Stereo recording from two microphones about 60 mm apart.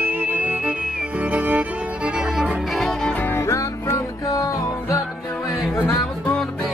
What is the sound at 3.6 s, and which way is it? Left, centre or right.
Music, left.